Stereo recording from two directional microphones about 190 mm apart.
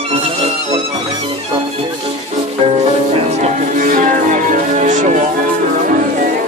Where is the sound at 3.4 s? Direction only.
45° right (ahead or behind).